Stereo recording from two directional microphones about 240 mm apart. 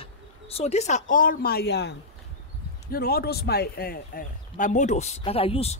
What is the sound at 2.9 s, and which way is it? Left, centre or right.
Speech, left.